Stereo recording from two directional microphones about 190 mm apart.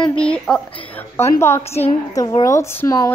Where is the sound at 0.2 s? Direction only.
5° left (ahead or behind).